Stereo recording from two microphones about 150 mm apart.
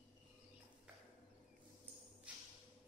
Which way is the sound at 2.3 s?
10° right (ahead or behind).